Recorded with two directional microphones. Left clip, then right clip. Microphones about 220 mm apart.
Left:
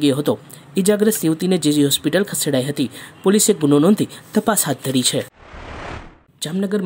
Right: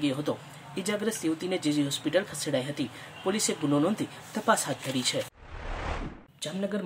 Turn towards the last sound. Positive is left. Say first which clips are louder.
# left 10 dB
turn(degrees=40)  # may be behind; listen again after turning